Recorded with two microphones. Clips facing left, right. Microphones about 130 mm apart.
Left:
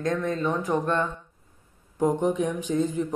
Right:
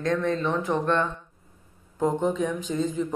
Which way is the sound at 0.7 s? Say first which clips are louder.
Right 1 dB; 15° left (ahead or behind).